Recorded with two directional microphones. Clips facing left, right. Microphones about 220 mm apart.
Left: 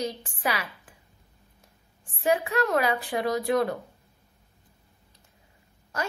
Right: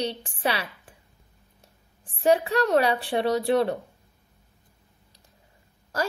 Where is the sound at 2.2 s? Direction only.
35° right (ahead or behind).